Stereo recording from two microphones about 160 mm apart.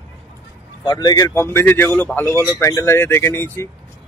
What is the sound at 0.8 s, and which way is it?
Speech, 25° left (ahead or behind).